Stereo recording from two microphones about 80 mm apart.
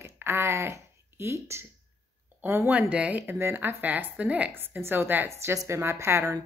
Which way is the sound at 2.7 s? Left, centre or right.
Centre.